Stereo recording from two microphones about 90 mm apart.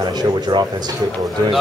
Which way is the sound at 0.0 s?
50° right (ahead or behind).